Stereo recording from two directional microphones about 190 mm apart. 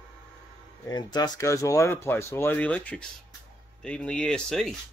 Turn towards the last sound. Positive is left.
turn(degrees=5)  # may be behind; listen again after turning